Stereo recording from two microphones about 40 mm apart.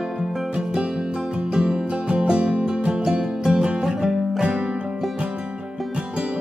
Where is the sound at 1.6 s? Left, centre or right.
Right.